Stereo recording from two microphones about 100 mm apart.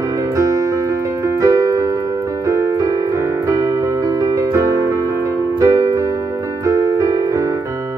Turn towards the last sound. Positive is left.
turn(degrees=-35)  # may be behind; listen again after turning